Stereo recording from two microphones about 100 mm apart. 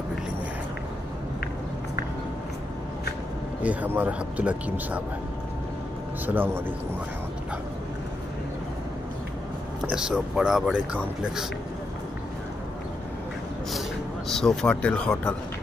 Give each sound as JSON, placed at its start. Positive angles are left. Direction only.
{"t": 3.6, "sound": "speech", "side_deg": -15}
{"t": 6.2, "sound": "speech", "side_deg": -20}
{"t": 9.8, "sound": "speech", "side_deg": -5}
{"t": 14.3, "sound": "speech", "side_deg": 5}